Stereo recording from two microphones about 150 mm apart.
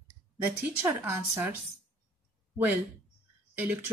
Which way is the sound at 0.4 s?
15° right (ahead or behind).